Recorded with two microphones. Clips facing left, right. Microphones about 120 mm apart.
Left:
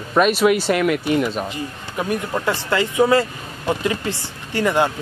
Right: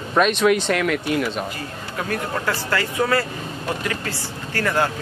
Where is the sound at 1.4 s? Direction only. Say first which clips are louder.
Left 2 dB; 20° left (ahead or behind).